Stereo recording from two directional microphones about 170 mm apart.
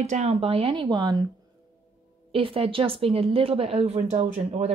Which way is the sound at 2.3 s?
35° right (ahead or behind).